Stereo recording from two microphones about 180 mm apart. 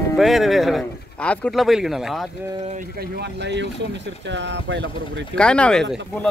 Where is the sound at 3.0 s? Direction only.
65° right (ahead or behind); by 5.2 s 85° right.